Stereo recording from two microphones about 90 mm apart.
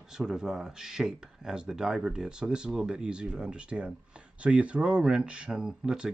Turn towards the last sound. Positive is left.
turn(degrees=-10)  # may be behind; listen again after turning